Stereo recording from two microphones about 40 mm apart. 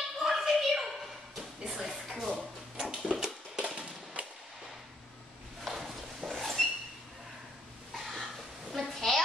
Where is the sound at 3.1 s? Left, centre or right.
Centre.